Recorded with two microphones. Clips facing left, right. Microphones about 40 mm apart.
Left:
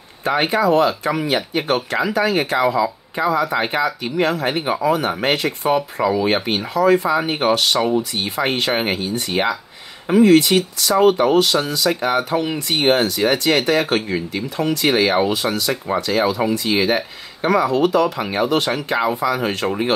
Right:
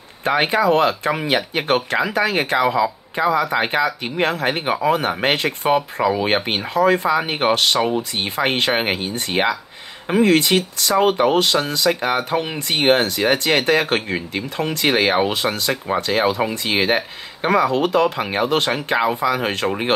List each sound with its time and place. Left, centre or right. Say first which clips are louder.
0.4 s speech: left 1 dB; right